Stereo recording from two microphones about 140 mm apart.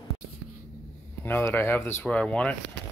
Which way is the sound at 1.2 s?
20° left (ahead or behind).